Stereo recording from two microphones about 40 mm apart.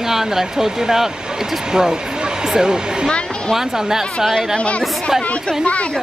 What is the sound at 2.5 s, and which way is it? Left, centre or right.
Speech, centre.